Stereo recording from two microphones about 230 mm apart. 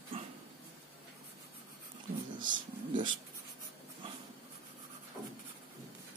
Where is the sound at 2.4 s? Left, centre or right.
Centre.